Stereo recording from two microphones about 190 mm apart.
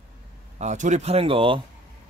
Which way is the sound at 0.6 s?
40° right (ahead or behind).